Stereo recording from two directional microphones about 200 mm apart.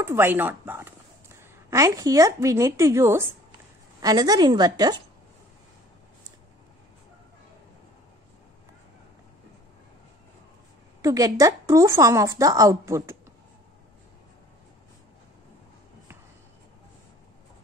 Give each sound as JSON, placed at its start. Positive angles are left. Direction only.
{"t": 0.0, "sound": "a woman's voice", "side_deg": -10}
{"t": 11.0, "sound": "speech", "side_deg": -15}